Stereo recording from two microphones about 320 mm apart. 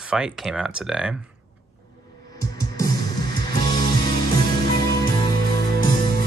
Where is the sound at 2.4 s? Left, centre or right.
Centre.